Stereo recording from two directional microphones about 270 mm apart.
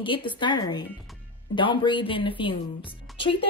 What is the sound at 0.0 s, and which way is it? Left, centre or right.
A woman's voice, centre.